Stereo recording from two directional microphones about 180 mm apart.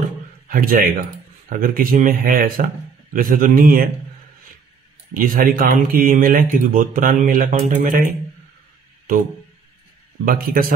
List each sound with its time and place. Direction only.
0.5 s speech: 50° right (ahead or behind)
5.1 s speech: 50° right (ahead or behind)
10.2 s speech: 55° right (ahead or behind)